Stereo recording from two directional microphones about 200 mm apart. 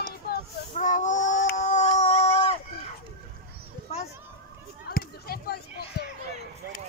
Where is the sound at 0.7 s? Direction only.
40° left (ahead or behind).